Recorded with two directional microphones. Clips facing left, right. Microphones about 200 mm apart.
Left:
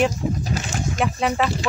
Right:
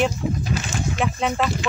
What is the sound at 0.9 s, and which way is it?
Speech, centre (ahead or behind).